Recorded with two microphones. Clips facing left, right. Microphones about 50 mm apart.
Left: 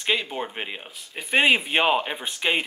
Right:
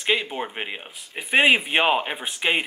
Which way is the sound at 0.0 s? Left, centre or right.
Centre.